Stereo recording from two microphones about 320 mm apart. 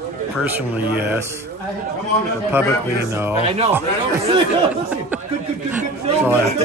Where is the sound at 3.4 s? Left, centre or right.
Centre.